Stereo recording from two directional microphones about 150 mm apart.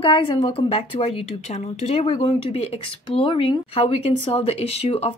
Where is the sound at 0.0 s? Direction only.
35° left (ahead or behind).